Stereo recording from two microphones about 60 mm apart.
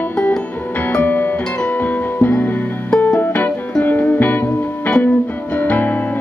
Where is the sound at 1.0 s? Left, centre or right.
Left.